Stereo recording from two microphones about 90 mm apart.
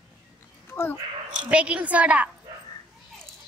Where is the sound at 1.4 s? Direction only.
15° right (ahead or behind).